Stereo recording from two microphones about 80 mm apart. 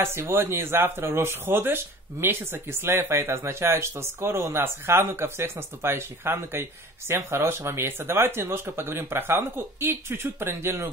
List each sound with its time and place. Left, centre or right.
0.0 s speech: right